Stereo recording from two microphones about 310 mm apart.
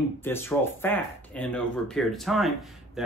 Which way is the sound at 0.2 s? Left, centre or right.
Centre.